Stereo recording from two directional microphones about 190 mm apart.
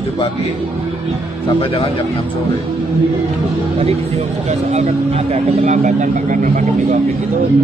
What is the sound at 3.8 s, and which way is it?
A man's voice, 35° right (ahead or behind).